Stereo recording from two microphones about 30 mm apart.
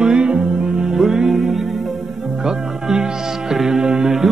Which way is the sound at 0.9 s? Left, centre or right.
Centre.